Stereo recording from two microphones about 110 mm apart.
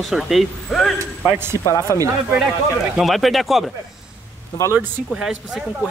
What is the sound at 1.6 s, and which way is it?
Speech, 30° left (ahead or behind).